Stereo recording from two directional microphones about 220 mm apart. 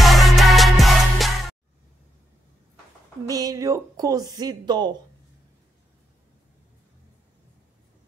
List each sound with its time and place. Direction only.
0.0 s music: centre (ahead or behind)
3.3 s speech: 15° right (ahead or behind)